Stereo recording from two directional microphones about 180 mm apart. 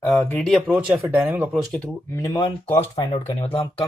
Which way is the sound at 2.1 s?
20° left (ahead or behind).